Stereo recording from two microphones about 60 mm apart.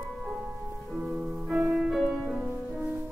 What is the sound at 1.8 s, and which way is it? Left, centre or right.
Music, centre.